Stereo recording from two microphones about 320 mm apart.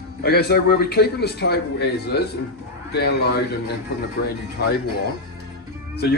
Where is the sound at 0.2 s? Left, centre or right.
Left.